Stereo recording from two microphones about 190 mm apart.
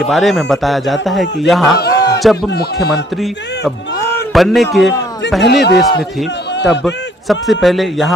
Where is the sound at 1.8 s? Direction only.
60° left (ahead or behind).